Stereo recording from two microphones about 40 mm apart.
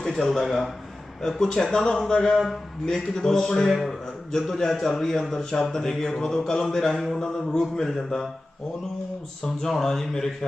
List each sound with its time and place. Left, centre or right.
0.0 s a man's voice: centre
1.4 s speech: centre
2.0 s mantra: centre
2.5 s speech: centre
9.7 s speech: centre